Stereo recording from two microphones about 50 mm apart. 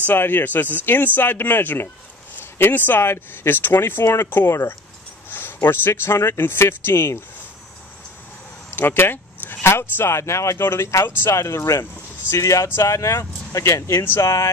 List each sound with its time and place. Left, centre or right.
0.0 s speech: left
4.0 s speech: left
5.3 s speech: left
8.6 s a sound: left
9.6 s speech: left
10.6 s speech: left
11.2 s speech: left